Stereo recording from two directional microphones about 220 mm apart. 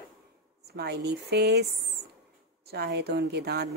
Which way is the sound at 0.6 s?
45° right (ahead or behind).